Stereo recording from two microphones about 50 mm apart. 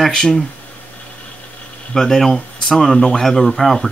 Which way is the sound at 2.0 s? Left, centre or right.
Centre.